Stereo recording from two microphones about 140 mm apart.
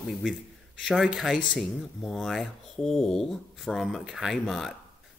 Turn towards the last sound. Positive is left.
turn(degrees=0)  # may be behind; listen again after turning